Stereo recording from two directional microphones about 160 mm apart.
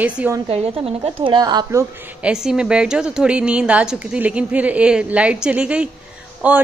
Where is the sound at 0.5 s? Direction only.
35° right (ahead or behind).